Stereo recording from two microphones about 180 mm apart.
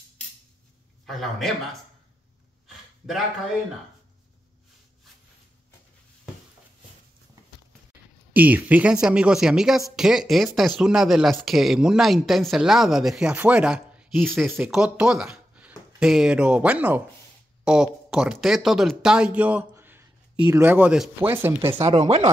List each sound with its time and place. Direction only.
1.0 s speech: centre (ahead or behind)
8.3 s speech: 10° right (ahead or behind)
21.8 s speech: 35° right (ahead or behind)